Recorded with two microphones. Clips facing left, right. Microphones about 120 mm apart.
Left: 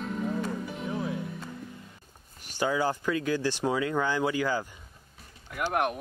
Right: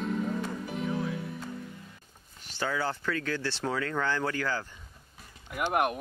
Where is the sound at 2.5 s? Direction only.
15° left (ahead or behind).